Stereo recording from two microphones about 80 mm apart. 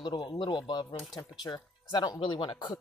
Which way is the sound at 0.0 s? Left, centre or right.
Left.